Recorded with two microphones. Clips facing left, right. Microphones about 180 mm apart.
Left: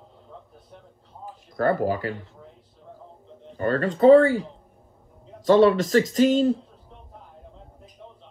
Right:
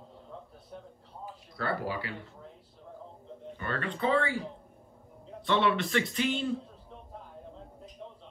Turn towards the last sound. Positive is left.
turn(degrees=40)  # may be behind; listen again after turning